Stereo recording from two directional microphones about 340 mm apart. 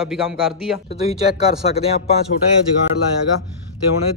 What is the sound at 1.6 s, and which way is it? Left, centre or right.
Speech, centre.